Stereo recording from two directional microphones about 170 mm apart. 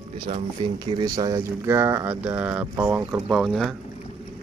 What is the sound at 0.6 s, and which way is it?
Speech, 25° right (ahead or behind).